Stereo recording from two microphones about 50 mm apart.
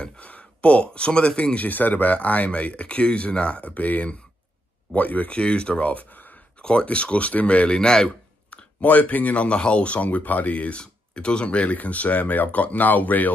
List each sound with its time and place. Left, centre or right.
0.0 s speech: left
5.4 s speech: centre; by 6.4 s left
6.6 s speech: centre
8.8 s speech: left
10.8 s speech: centre; by 13.3 s left